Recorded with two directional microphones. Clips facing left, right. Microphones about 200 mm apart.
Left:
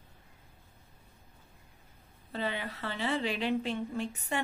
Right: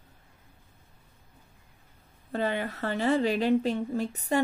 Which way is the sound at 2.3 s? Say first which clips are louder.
Right 6 dB; 50° right (ahead or behind).